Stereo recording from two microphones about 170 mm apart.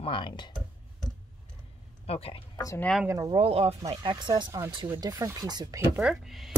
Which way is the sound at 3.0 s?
15° right (ahead or behind).